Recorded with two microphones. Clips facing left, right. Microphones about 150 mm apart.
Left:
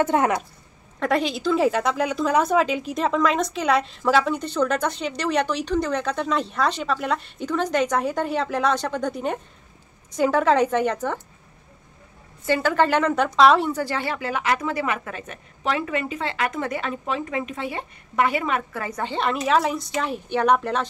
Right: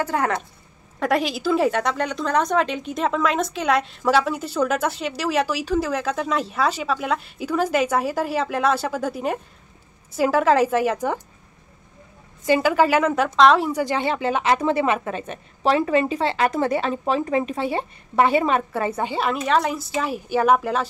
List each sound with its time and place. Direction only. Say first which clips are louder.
0.0 s a woman's voice: left 3 dB; 20° left (ahead or behind)
0.9 s a woman's voice: right 1 dB; centre (ahead or behind)
12.4 s a woman's voice: right 2 dB; 10° right (ahead or behind)
13.7 s a woman's voice: right 3 dB; 15° right (ahead or behind)
19.0 s a woman's voice: even; 5° right (ahead or behind)